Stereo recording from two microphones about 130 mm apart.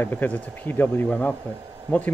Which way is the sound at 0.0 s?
15° left (ahead or behind).